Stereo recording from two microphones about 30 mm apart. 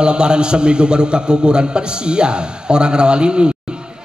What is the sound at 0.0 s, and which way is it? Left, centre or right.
A man's voice, right.